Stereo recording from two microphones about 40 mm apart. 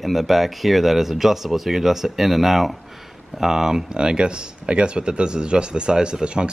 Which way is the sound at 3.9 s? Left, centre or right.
Right.